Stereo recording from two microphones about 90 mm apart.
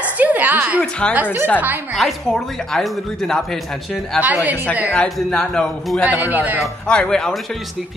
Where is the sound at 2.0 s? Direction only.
5° left (ahead or behind).